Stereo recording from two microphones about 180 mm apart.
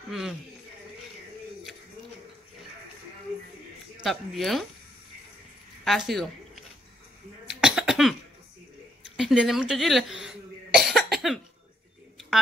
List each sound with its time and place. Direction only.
0.1 s speech: centre (ahead or behind)
4.0 s speech: centre (ahead or behind)
5.9 s speech: centre (ahead or behind)
7.4 s cough: 5° right (ahead or behind)